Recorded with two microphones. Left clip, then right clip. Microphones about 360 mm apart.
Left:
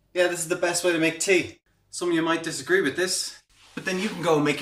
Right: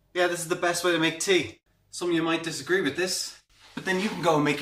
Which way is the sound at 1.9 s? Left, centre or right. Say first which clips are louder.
Left 2 dB; centre.